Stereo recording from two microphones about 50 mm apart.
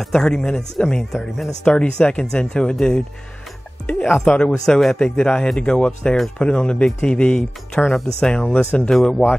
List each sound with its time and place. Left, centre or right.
0.0 s speech: centre
4.0 s speech: centre
4.3 s speech: centre